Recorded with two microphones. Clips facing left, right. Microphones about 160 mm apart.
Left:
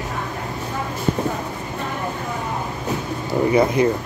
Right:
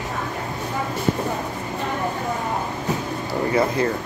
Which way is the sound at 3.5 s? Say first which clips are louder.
Left 4 dB; 20° left (ahead or behind).